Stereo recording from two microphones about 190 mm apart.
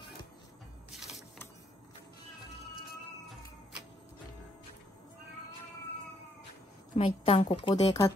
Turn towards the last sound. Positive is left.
turn(degrees=35)  # may be behind; listen again after turning